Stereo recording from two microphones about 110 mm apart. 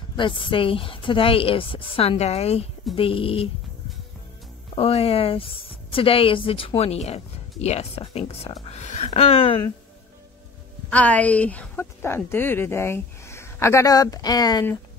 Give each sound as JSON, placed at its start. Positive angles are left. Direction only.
{"t": 0.1, "sound": "speech", "side_deg": 50}
{"t": 3.0, "sound": "a woman's voice", "side_deg": 55}
{"t": 4.7, "sound": "a woman's voice", "side_deg": 60}
{"t": 8.0, "sound": "a woman's voice", "side_deg": 60}
{"t": 8.6, "sound": "a woman's voice", "side_deg": 90}
{"t": 10.9, "sound": "speech", "side_deg": 15}